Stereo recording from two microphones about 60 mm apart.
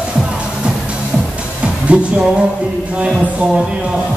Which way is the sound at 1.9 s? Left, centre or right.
Right.